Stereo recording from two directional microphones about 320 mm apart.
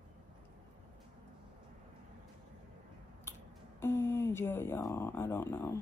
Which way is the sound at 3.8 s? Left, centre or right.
Centre.